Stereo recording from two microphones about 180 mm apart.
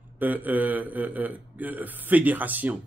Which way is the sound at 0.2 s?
10° right (ahead or behind).